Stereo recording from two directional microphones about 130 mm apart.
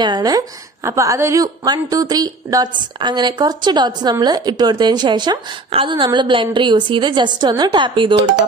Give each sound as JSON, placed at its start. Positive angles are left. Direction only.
{"t": 0.0, "sound": "a woman's voice", "side_deg": -30}